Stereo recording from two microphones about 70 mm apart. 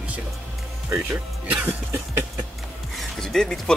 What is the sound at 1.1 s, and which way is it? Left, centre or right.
Speech, right.